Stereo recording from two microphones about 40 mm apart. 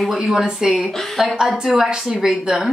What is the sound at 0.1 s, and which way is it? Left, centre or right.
A woman's voice, centre.